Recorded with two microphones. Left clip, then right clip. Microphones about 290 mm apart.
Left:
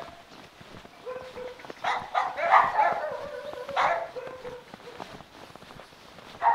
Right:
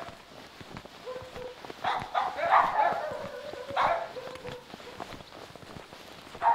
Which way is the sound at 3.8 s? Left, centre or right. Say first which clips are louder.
Left 2 dB; centre.